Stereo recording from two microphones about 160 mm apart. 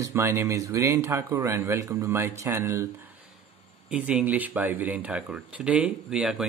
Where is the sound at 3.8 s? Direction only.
5° right (ahead or behind).